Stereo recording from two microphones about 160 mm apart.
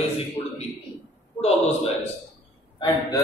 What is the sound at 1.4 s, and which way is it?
Speech, 40° left (ahead or behind).